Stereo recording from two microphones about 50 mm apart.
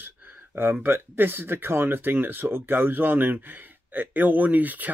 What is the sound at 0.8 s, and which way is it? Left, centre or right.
Speech, right.